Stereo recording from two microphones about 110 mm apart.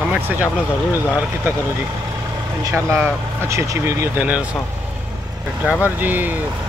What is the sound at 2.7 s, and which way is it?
Speech, 20° right (ahead or behind).